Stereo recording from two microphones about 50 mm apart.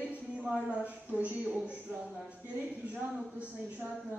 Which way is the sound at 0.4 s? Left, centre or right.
Centre.